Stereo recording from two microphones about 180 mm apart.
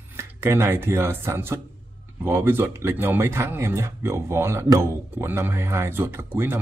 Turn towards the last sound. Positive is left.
turn(degrees=-15)  # may be behind; listen again after turning